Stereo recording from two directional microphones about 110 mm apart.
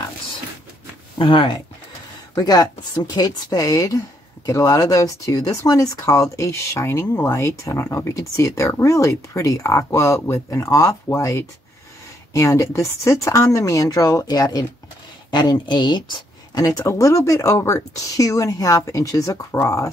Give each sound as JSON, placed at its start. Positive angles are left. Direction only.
{"t": 1.1, "sound": "speech", "side_deg": 50}
{"t": 2.3, "sound": "speech", "side_deg": 35}
{"t": 16.5, "sound": "speech", "side_deg": 30}